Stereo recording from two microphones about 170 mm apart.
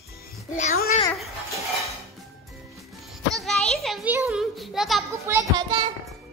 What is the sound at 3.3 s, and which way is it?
Speech, centre (ahead or behind).